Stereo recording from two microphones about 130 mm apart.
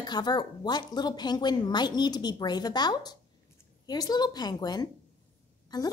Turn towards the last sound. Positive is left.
turn(degrees=30)  # may be behind; listen again after turning